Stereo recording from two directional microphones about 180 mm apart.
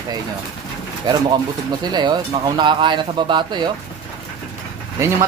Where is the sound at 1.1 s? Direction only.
25° right (ahead or behind).